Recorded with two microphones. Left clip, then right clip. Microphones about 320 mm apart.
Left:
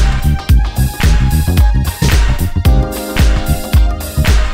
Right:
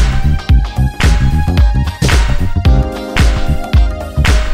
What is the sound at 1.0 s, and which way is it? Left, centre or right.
Music, centre.